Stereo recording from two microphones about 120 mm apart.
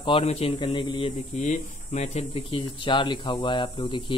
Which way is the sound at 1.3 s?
85° left.